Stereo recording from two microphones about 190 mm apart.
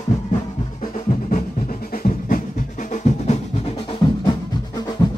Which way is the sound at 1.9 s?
45° left (ahead or behind).